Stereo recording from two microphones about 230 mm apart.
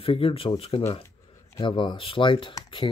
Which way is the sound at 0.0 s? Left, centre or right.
Left.